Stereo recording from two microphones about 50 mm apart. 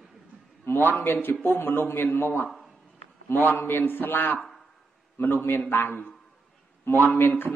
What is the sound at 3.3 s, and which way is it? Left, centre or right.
A man's voice, left.